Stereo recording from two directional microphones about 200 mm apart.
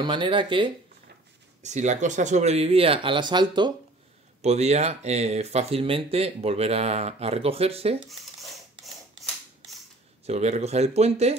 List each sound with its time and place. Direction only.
0.0 s speech: 25° right (ahead or behind)
1.6 s speech: 35° right (ahead or behind)
4.4 s speech: 35° right (ahead or behind)
8.1 s a sound: centre (ahead or behind)
10.2 s speech: 35° right (ahead or behind)